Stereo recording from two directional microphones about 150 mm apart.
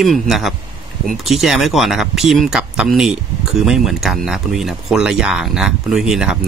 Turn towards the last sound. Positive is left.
turn(degrees=-5)  # may be behind; listen again after turning